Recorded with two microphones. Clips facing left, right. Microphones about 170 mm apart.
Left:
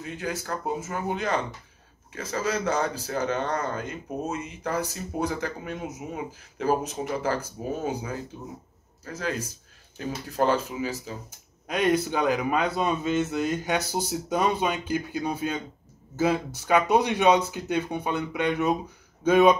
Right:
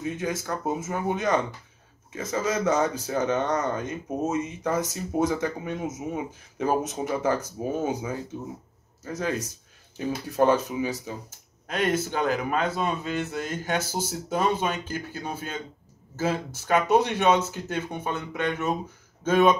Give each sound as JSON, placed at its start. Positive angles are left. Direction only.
{"t": 0.0, "sound": "speech", "side_deg": -20}
{"t": 11.2, "sound": "speech", "side_deg": 15}